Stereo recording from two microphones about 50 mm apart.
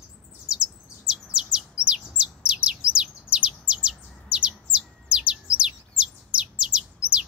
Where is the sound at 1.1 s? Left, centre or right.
Centre.